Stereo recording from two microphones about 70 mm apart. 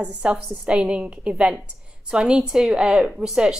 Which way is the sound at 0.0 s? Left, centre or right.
Centre.